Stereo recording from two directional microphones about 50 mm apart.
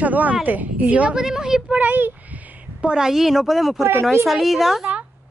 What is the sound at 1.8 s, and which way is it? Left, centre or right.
Speech, right.